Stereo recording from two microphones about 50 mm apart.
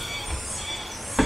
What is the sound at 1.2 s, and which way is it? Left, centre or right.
Train, centre.